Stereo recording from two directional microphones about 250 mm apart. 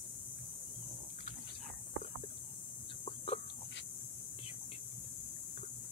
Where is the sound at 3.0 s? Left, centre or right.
Left.